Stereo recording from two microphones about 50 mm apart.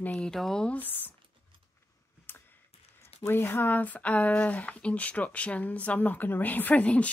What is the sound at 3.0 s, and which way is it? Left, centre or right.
Speech, left.